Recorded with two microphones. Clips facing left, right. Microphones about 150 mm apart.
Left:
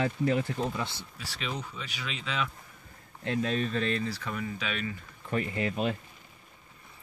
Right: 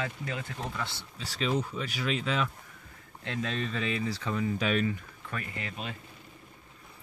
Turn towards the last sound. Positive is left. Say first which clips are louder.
# left 9 dB
turn(degrees=40)  # may be behind; listen again after turning